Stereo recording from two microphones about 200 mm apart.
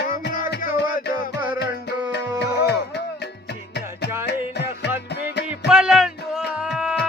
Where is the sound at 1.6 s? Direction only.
55° left (ahead or behind).